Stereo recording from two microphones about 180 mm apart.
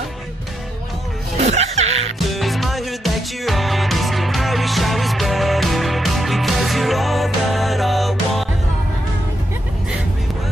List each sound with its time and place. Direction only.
1.4 s music: 35° right (ahead or behind)
2.1 s music: centre (ahead or behind)